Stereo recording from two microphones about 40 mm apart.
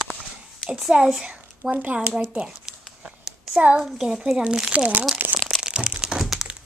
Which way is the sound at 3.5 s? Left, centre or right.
Centre.